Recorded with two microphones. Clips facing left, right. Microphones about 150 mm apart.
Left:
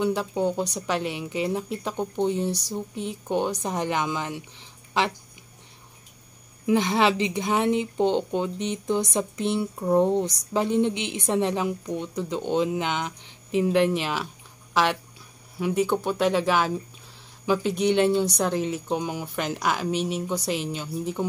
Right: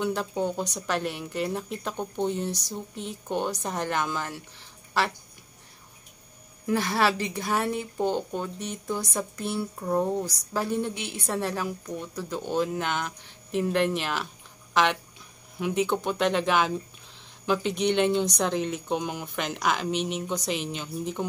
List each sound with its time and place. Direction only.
0.0 s speech: 15° left (ahead or behind)
6.6 s a woman's voice: 20° left (ahead or behind)
17.8 s speech: 10° left (ahead or behind)